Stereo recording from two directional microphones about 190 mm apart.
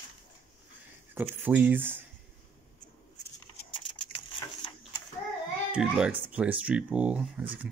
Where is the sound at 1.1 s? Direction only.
10° right (ahead or behind).